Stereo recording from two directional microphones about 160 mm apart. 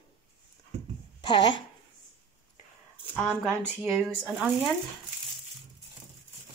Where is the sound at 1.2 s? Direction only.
30° left (ahead or behind).